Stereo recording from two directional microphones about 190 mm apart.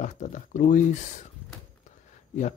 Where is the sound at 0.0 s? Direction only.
40° left (ahead or behind).